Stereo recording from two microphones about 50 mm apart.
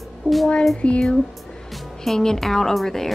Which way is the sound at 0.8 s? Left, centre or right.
Left.